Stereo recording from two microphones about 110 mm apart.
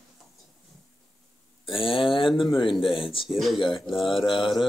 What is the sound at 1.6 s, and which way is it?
Speech, 55° left (ahead or behind).